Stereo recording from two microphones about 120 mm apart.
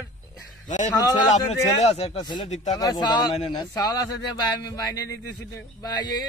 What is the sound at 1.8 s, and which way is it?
Speech, 60° left (ahead or behind).